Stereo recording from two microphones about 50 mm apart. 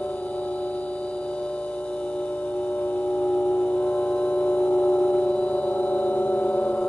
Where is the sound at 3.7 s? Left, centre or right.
Left.